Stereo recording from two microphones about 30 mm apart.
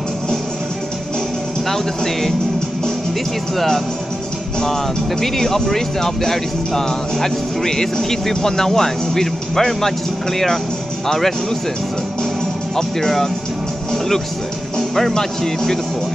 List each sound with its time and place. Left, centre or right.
3.5 s speech: centre
5.2 s speech: centre
11.1 s speech: centre
12.7 s speech: centre
14.8 s music: centre
15.1 s speech: centre